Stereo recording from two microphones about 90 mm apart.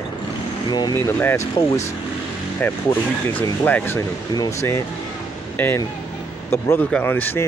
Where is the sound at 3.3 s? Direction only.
20° left (ahead or behind).